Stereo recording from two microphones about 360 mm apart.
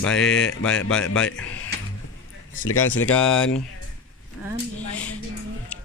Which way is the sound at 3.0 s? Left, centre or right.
Centre.